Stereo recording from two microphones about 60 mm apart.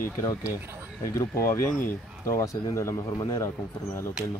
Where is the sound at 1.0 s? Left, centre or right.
Left.